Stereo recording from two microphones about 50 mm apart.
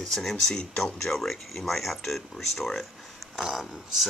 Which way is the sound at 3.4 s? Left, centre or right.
Centre.